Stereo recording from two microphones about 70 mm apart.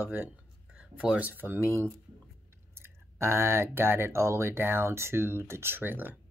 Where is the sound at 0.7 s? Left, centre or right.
Centre.